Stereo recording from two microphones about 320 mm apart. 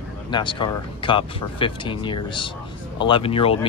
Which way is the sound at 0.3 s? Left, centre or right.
Centre.